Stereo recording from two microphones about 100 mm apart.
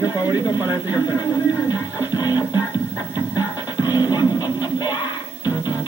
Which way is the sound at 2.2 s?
45° left (ahead or behind).